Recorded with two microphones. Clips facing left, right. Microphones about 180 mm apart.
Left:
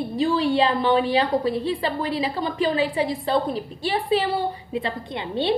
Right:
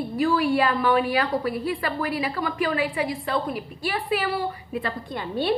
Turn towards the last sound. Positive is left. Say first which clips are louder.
# left 1 dB
turn(degrees=20)  # may be behind; listen again after turning